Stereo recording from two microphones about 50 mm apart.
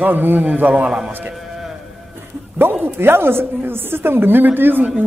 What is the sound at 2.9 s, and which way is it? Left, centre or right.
A man's voice, right.